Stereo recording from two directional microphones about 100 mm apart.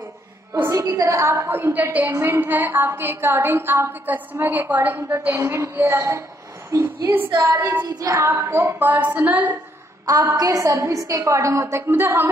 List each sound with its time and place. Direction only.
0.6 s a woman's voice: 30° right (ahead or behind)
1.7 s a woman's voice: 15° right (ahead or behind)
4.9 s a woman's voice: 30° right (ahead or behind)
6.7 s a sound: 25° right (ahead or behind)
7.3 s a woman's voice: 25° right (ahead or behind)
7.8 s a woman's voice: 40° right (ahead or behind); by 9.6 s 15° right (ahead or behind)
10.0 s a woman's voice: 40° right (ahead or behind); by 12.3 s 20° right (ahead or behind)